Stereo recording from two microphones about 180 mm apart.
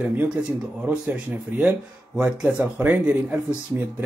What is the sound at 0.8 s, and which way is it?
Speech, 5° right (ahead or behind).